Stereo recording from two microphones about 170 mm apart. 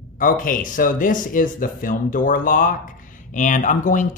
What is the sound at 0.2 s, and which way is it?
Speech, 55° left (ahead or behind).